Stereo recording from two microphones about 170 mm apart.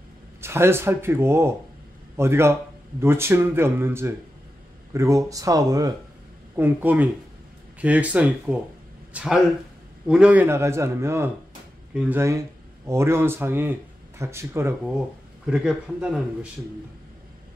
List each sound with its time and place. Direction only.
0.4 s a man's voice: 15° right (ahead or behind)
15.4 s speech: 5° right (ahead or behind)